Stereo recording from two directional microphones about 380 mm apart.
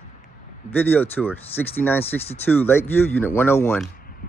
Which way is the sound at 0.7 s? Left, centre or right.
Centre.